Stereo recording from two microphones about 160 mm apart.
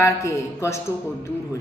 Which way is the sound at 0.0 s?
20° left (ahead or behind).